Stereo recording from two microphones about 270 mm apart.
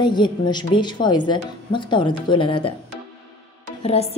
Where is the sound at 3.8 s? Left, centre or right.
Left.